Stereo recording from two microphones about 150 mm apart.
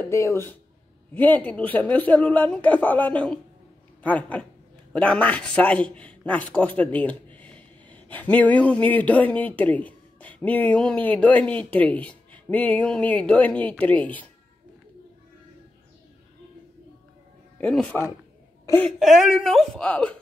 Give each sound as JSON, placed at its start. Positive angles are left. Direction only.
{"t": 0.1, "sound": "a man's voice", "side_deg": 20}
{"t": 17.6, "sound": "a man's voice", "side_deg": 5}